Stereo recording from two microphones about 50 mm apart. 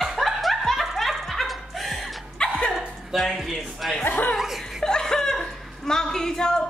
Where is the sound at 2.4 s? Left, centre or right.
Centre.